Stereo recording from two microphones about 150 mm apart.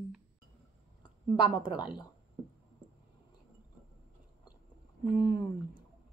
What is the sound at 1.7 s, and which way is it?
Speech, 10° right (ahead or behind).